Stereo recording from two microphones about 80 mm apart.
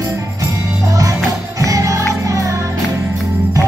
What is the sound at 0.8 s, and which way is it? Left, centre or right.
Music, right.